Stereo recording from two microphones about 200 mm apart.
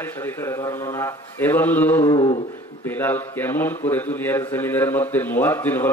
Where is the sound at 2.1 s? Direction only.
25° left (ahead or behind).